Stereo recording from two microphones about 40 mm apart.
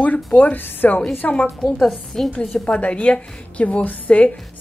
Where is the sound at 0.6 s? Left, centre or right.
Left.